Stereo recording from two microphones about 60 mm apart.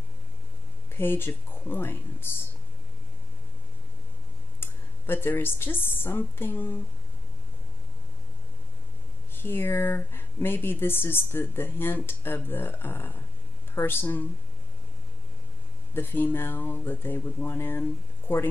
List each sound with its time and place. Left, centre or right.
0.8 s speech: left
4.6 s speech: left
9.3 s speech: left
15.9 s speech: left